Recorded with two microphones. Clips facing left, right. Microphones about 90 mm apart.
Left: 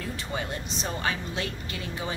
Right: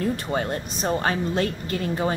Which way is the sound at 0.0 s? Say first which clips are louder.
Right 8 dB; 50° right (ahead or behind).